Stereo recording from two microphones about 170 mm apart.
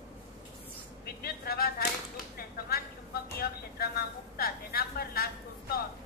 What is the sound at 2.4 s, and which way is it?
Vehicle, 65° left (ahead or behind).